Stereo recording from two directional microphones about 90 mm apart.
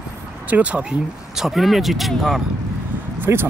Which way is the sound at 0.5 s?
15° right (ahead or behind).